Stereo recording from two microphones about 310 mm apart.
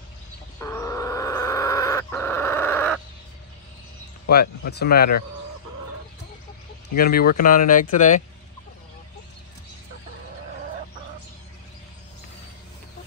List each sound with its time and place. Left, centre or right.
0.6 s a sound: centre
4.3 s speech: left
7.0 s speech: left